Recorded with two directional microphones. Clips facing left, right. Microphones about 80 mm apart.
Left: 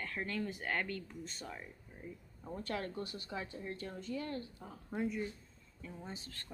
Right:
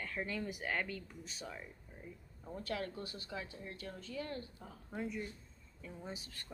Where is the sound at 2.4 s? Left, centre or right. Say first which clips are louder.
Left 1 dB; left.